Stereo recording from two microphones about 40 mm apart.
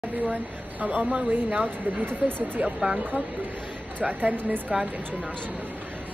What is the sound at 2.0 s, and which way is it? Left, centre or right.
Speech, right.